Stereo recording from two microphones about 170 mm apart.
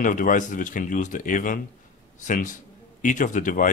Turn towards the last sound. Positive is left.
turn(degrees=50)  # may be behind; listen again after turning